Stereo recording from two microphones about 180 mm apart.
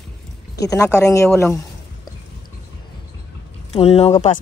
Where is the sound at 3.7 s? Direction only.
35° left (ahead or behind).